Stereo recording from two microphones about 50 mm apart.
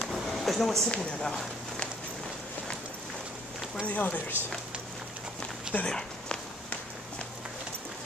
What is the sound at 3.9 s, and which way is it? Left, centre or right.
Speech, left.